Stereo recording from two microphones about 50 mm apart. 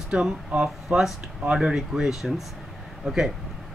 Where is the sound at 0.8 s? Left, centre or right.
Centre.